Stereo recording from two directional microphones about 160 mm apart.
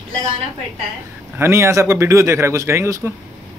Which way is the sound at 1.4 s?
15° right (ahead or behind).